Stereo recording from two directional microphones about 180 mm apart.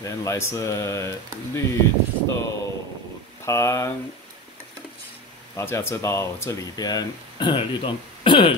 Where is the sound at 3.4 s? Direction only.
15° left (ahead or behind).